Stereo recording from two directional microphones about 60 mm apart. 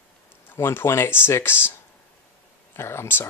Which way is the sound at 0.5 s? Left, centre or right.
Left.